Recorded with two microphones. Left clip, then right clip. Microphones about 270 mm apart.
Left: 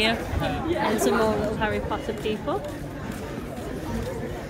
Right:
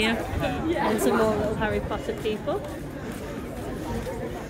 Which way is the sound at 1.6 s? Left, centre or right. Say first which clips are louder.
Left 1 dB; left.